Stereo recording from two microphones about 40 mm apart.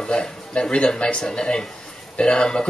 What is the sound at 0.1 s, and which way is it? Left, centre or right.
Speech, left.